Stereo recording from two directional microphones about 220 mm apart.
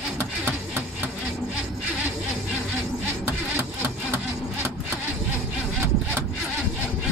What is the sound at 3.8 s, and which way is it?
Music, 10° right (ahead or behind).